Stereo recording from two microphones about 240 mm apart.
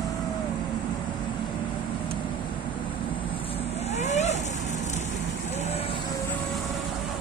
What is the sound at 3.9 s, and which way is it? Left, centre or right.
Vehicle, left.